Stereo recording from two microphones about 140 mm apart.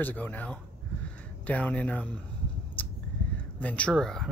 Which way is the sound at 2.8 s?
10° left (ahead or behind).